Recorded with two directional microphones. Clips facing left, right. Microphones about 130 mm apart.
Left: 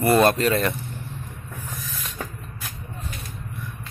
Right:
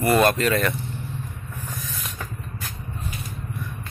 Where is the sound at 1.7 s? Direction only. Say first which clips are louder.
Right 1 dB; centre (ahead or behind).